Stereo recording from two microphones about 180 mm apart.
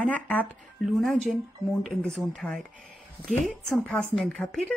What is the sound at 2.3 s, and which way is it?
A woman's voice, centre (ahead or behind).